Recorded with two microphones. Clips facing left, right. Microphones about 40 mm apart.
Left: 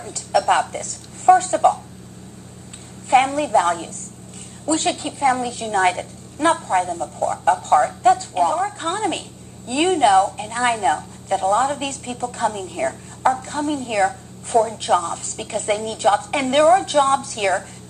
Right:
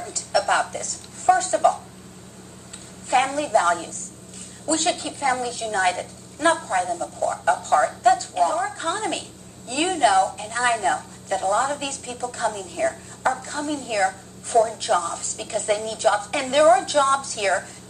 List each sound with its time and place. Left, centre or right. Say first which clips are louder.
0.0 s a woman's voice: left 3 dB; left
3.1 s a woman's voice: left 4 dB; left